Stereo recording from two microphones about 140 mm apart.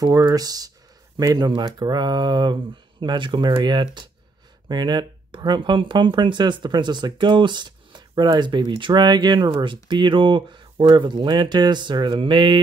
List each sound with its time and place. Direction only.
0.0 s speech: 25° right (ahead or behind)